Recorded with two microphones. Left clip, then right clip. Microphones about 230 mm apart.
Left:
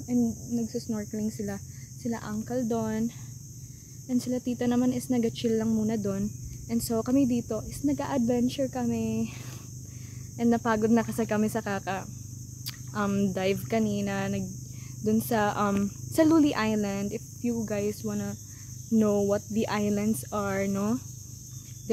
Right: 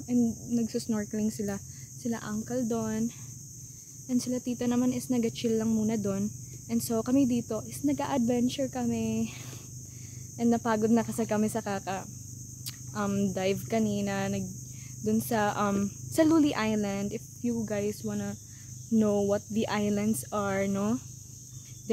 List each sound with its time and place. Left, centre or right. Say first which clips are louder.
0.0 s speech: even; centre
0.6 s speech: right 2 dB; right
2.0 s speech: left 1 dB; centre
10.3 s speech: left 2 dB; centre
15.0 s speech: left 2 dB; centre